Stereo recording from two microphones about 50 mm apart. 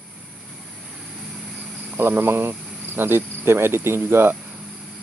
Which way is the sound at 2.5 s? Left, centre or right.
Centre.